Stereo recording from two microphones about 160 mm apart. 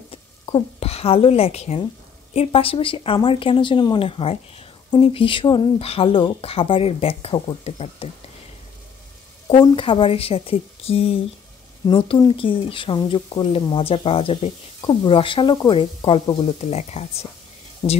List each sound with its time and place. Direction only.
0.1 s a woman's voice: 35° left (ahead or behind)
9.6 s a woman's voice: 30° left (ahead or behind)
16.7 s speech: 40° left (ahead or behind)